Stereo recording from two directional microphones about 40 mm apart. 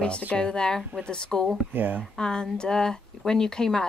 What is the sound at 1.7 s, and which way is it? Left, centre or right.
Speech, right.